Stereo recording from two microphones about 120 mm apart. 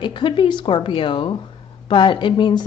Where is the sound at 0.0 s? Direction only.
40° left (ahead or behind).